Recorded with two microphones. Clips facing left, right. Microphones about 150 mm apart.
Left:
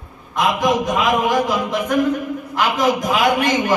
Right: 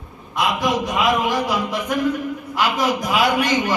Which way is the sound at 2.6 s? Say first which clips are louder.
Left 2 dB; 50° left (ahead or behind).